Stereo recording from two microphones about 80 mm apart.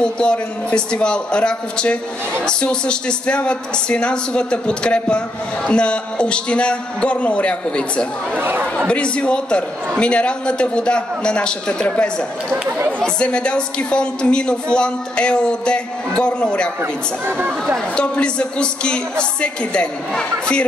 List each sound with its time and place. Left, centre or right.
0.0 s a man's voice: centre
8.4 s speech: right
8.7 s a man's voice: centre
12.6 s speech: right
13.0 s a man's voice: centre
17.9 s a man's voice: centre